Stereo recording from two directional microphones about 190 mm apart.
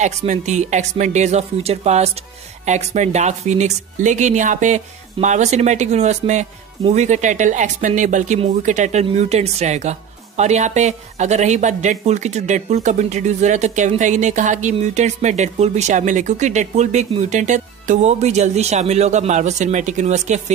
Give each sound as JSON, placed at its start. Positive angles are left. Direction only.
{"t": 0.0, "sound": "a woman's voice", "side_deg": -40}